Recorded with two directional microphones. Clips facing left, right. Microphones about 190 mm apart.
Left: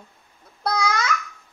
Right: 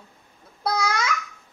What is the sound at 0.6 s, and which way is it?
Babbling, 5° right (ahead or behind).